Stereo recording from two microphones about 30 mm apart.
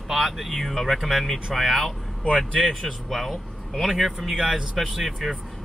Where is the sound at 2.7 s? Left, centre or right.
Centre.